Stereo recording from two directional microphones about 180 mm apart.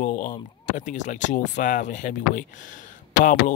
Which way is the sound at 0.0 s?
45° left (ahead or behind).